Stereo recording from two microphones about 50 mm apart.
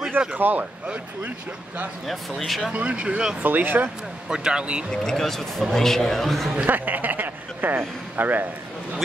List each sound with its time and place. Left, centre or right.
0.4 s speech: right
2.0 s a man's voice: centre
2.7 s speech: right
3.4 s speech: right
4.3 s speech: centre
4.9 s a man's voice: centre
6.6 s speech: right